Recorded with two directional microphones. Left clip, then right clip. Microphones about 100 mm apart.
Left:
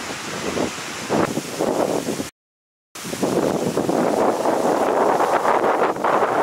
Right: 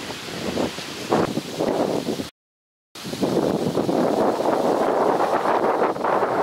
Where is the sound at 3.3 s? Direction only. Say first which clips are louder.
Left 1 dB; 50° right (ahead or behind).